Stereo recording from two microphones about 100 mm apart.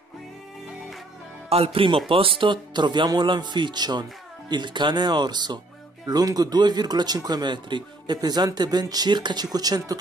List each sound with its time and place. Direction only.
1.5 s speech: 75° right (ahead or behind); by 9.9 s 40° right (ahead or behind)